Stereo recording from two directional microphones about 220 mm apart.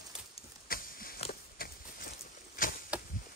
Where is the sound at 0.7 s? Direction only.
40° left (ahead or behind).